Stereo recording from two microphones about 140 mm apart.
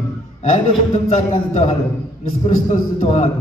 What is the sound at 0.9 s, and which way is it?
Speech, 55° left (ahead or behind).